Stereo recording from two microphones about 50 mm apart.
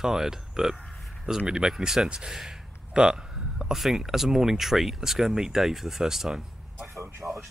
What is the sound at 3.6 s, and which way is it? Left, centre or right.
Speech, centre.